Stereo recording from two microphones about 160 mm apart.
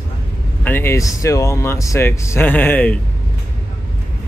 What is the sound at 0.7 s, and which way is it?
Speech, 15° left (ahead or behind).